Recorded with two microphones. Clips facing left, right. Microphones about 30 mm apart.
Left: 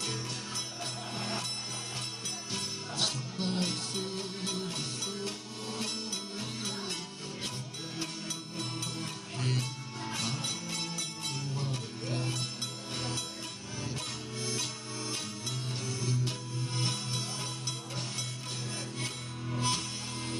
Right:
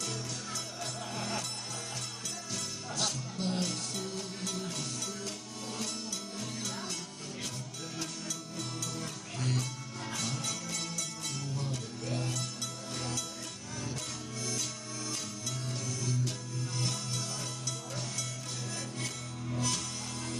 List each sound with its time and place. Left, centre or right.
0.0 s music: left
2.5 s music: left
6.6 s music: left
8.0 s music: left
14.4 s music: left
18.9 s music: left